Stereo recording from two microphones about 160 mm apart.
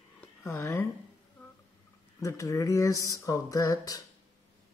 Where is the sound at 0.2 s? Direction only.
15° left (ahead or behind).